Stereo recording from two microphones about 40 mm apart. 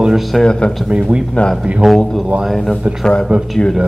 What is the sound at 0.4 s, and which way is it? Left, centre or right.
Speech, left.